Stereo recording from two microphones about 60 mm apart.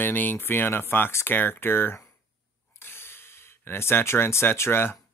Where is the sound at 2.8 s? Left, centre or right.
Left.